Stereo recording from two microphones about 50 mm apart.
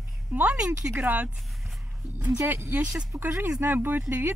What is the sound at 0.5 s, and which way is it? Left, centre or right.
Speech, centre.